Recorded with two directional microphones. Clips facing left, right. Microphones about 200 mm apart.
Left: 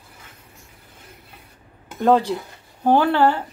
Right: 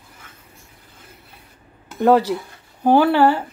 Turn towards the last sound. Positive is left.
turn(degrees=-10)  # may be behind; listen again after turning